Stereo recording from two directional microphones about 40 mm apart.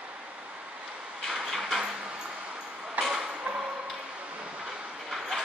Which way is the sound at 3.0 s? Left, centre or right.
Centre.